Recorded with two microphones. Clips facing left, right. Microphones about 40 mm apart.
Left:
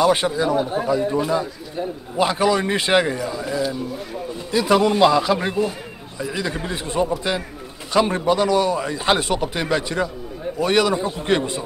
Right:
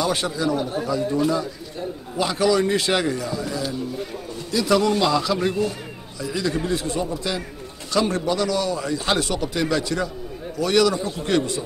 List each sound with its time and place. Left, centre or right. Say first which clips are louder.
0.0 s a man's voice: left 5 dB; left